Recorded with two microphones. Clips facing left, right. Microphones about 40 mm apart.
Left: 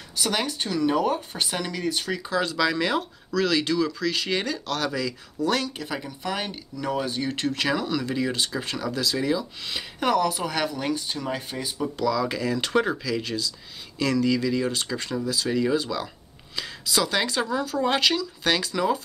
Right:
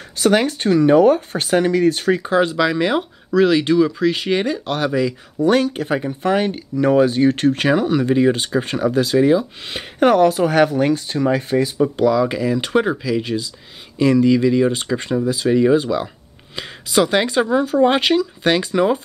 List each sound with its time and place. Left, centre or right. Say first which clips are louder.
0.2 s speech: right 11 dB; right
2.5 s speech: right 6 dB; centre
6.8 s speech: right 13 dB; right
12.0 s speech: right 7 dB; right